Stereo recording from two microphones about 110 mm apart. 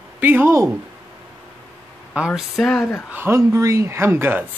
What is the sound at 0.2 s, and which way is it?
Speech, 15° right (ahead or behind).